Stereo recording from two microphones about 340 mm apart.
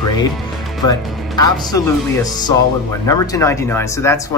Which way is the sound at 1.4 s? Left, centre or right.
Centre.